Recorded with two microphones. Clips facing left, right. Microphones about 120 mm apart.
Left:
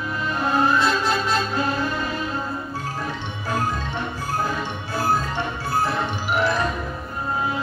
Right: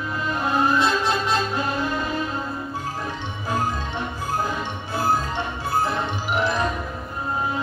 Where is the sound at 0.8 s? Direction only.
20° right (ahead or behind).